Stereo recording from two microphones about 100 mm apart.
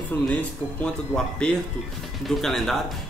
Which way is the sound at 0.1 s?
20° left (ahead or behind).